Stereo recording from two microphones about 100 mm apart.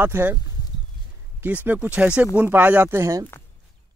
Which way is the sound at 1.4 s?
20° right (ahead or behind).